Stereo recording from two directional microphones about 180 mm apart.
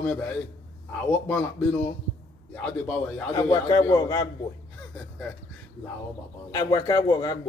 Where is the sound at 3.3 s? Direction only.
20° left (ahead or behind).